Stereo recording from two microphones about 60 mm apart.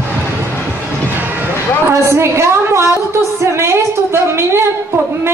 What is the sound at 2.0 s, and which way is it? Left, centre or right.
A woman's voice, right.